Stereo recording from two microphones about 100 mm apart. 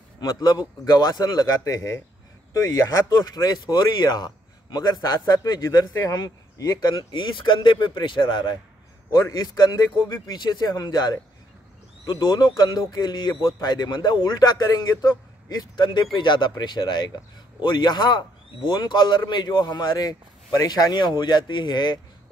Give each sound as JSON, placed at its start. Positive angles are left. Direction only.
{"t": 0.2, "sound": "a man's voice", "side_deg": 45}
{"t": 7.1, "sound": "speech", "side_deg": 55}
{"t": 9.1, "sound": "speech", "side_deg": 35}
{"t": 12.3, "sound": "speech", "side_deg": 45}
{"t": 14.7, "sound": "speech", "side_deg": 35}
{"t": 15.7, "sound": "speech", "side_deg": 50}